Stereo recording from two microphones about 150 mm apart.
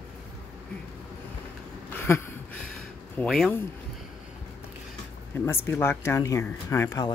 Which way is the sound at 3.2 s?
5° left (ahead or behind).